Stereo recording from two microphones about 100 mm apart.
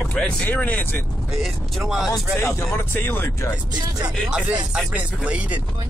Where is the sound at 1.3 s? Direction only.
Centre (ahead or behind).